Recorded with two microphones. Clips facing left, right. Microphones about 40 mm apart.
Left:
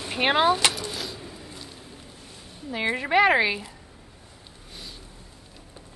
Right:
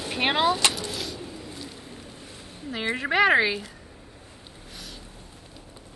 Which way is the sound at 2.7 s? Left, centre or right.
Centre.